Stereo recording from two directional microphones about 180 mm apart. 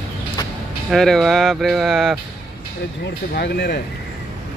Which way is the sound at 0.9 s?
Centre (ahead or behind).